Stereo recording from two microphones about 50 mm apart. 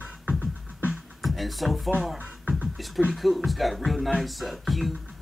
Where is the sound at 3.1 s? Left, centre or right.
Centre.